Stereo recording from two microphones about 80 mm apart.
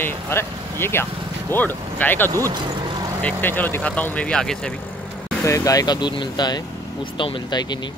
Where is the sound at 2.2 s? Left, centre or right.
Right.